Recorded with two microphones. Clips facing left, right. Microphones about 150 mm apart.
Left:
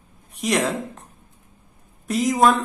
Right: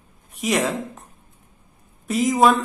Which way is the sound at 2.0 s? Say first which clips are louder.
Right 1 dB; centre (ahead or behind).